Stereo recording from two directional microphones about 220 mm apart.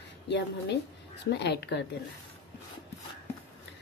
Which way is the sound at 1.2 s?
50° left (ahead or behind).